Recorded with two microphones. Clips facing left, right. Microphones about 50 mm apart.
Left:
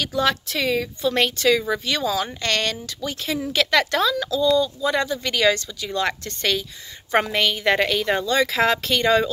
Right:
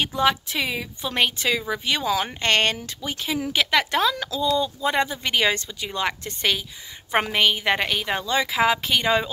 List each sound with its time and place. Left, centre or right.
0.0 s a woman's voice: right